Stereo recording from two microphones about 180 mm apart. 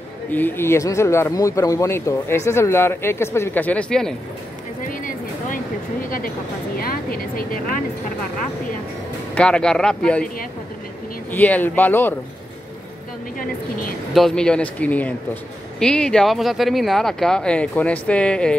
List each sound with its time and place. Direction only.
0.3 s speech: 10° left (ahead or behind)
4.8 s a sound: 50° left (ahead or behind)
6.0 s speech: 50° left (ahead or behind)
9.3 s speech: 5° left (ahead or behind)
11.3 s speech: 10° left (ahead or behind)
13.4 s speech: 50° left (ahead or behind)
14.1 s speech: 5° left (ahead or behind)